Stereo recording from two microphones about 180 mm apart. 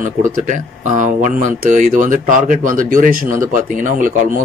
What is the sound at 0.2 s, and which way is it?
Speech, 45° right (ahead or behind).